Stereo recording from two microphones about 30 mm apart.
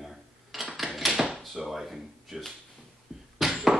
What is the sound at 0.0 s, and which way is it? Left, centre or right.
Dishes, centre.